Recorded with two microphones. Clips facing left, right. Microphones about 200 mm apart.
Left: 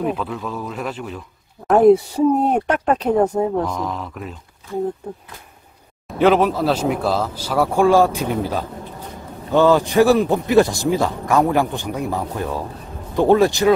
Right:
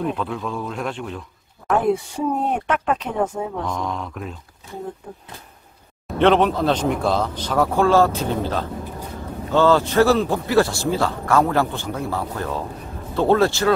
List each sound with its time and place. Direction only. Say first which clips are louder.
0.0 s a man's voice: left 1 dB; 5° left (ahead or behind)
1.7 s speech: left 8 dB; 40° left (ahead or behind)
3.6 s a man's voice: left 2 dB; centre (ahead or behind)
6.1 s a man's voice: left 1 dB; 5° left (ahead or behind)